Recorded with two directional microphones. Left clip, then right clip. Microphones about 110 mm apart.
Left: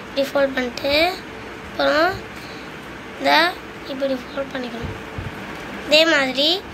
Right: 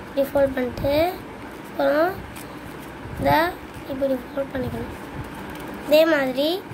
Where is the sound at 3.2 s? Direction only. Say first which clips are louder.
Left 3 dB; 30° right (ahead or behind).